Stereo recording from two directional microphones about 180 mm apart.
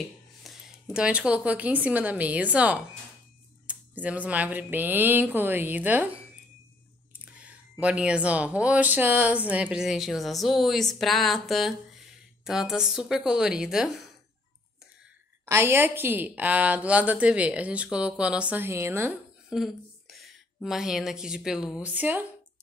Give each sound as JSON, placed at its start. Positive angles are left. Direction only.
{"t": 0.4, "sound": "a woman's voice", "side_deg": 0}
{"t": 7.3, "sound": "speech", "side_deg": -5}
{"t": 15.4, "sound": "a woman's voice", "side_deg": -15}
{"t": 19.5, "sound": "a woman's voice", "side_deg": 0}